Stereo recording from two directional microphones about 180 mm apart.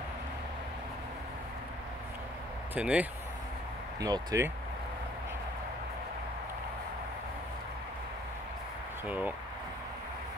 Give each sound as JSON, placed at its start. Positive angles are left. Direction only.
{"t": 2.7, "sound": "speech", "side_deg": -10}
{"t": 4.0, "sound": "speech", "side_deg": -20}
{"t": 9.0, "sound": "speech", "side_deg": -10}